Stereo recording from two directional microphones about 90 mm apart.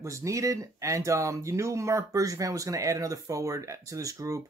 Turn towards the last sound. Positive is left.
turn(degrees=-35)  # may be behind; listen again after turning